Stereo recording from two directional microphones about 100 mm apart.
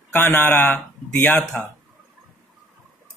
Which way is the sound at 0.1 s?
20° left (ahead or behind).